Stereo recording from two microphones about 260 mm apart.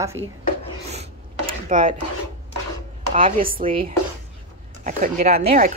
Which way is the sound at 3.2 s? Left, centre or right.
Right.